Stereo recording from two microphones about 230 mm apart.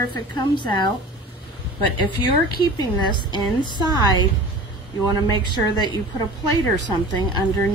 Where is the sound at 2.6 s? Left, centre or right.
Centre.